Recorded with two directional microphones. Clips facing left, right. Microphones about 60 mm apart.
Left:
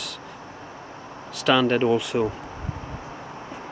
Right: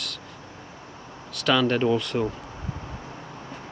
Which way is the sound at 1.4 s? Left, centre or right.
Centre.